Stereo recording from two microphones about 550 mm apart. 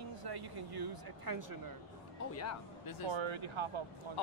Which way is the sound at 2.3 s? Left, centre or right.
Left.